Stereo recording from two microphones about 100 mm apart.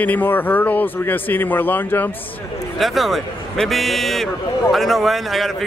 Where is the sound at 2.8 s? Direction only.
Centre (ahead or behind).